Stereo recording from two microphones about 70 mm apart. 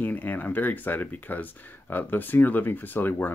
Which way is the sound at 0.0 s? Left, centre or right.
Left.